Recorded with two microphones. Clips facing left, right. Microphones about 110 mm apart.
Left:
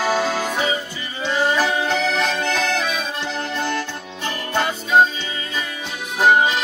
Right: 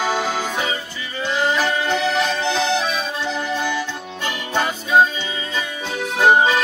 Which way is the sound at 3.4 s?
10° right (ahead or behind).